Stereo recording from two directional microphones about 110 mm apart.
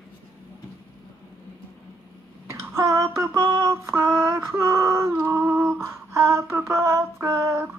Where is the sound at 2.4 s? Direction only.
25° right (ahead or behind).